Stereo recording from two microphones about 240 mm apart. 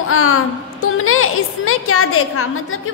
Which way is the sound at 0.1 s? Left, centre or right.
Left.